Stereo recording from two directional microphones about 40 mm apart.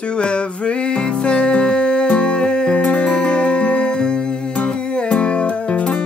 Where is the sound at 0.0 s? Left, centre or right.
Left.